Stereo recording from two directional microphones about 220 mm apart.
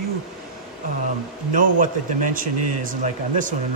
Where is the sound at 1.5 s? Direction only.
35° right (ahead or behind).